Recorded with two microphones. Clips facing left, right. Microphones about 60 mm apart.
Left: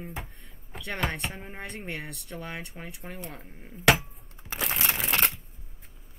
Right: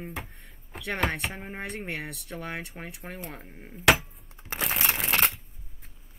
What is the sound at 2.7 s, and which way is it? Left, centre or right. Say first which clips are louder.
Speech: right 1 dB; centre.